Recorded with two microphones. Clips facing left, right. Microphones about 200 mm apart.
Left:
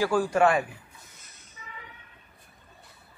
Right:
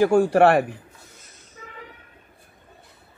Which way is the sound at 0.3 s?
65° right (ahead or behind).